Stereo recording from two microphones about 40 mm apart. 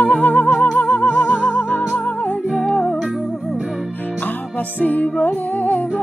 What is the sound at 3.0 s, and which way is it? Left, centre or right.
Music, centre.